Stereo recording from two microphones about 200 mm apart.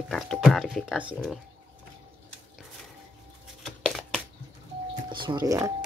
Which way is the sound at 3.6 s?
Centre (ahead or behind).